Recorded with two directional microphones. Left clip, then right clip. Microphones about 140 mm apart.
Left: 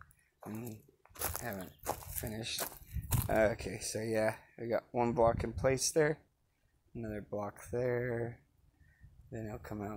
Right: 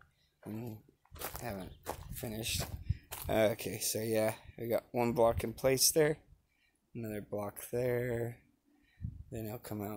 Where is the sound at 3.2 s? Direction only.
25° right (ahead or behind).